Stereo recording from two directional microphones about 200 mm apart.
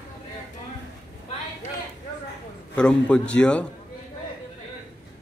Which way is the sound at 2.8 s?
5° left (ahead or behind).